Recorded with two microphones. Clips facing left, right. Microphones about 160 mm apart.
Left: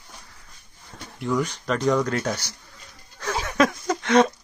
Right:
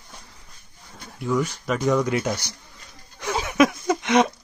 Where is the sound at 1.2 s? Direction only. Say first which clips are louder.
Right 1 dB; 5° right (ahead or behind).